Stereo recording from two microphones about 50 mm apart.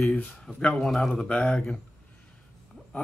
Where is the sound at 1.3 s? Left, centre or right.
Left.